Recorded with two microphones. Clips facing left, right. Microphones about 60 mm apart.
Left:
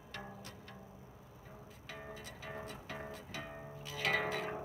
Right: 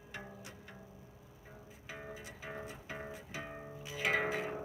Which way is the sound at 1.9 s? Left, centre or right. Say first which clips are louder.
Right 1 dB; centre.